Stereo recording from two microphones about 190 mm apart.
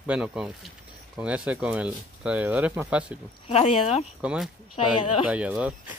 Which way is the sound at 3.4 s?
30° left (ahead or behind).